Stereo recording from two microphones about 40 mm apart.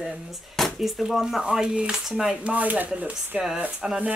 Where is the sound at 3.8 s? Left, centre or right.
Centre.